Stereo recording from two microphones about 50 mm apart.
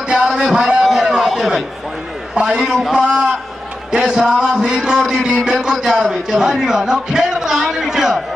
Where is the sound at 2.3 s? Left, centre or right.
Centre.